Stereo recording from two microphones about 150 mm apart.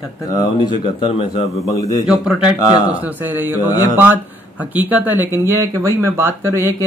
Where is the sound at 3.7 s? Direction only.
25° left (ahead or behind).